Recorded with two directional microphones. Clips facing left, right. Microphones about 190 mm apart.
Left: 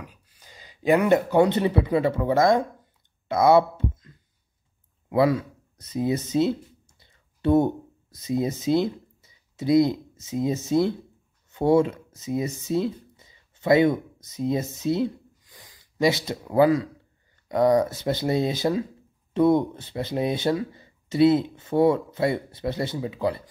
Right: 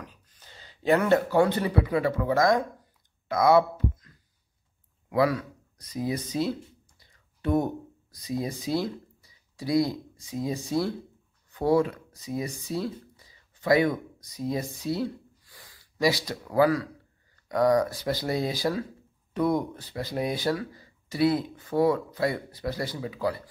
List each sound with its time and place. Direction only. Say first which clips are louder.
0.0 s speech: left 2 dB; 10° left (ahead or behind)